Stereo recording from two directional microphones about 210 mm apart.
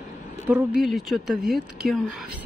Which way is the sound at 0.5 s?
10° right (ahead or behind).